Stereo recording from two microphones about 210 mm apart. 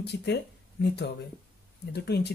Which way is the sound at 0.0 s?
50° left (ahead or behind).